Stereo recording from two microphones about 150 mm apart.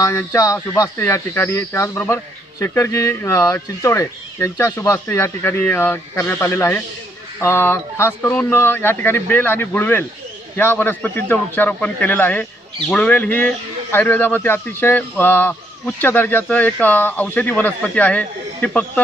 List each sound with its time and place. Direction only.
0.0 s speech: 20° left (ahead or behind)